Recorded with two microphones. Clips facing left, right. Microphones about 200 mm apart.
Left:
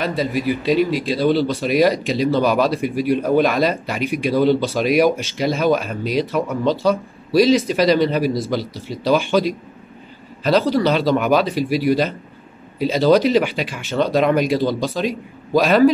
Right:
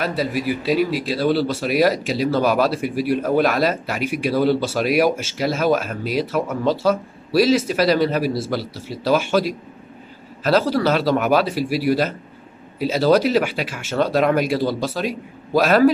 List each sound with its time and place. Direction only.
0.0 s speech: 5° right (ahead or behind)